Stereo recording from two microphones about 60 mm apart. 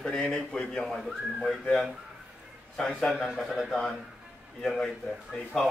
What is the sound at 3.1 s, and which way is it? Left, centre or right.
Speech, centre.